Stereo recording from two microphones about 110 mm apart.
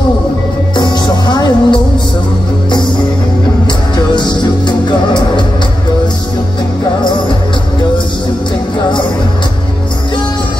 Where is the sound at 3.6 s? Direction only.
45° left (ahead or behind).